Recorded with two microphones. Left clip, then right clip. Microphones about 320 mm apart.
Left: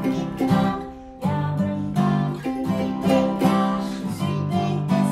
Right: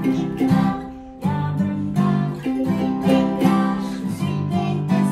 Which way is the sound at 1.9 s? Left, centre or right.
Centre.